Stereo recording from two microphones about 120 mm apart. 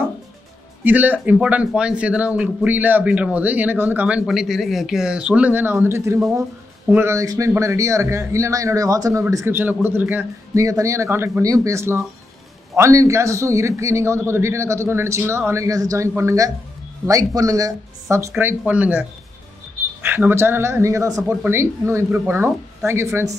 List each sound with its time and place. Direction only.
0.8 s speech: 15° right (ahead or behind)
4.3 s a man's voice: centre (ahead or behind)
10.6 s a man's voice: 25° right (ahead or behind)